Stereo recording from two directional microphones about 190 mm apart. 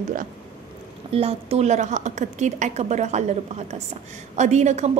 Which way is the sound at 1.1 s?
30° right (ahead or behind).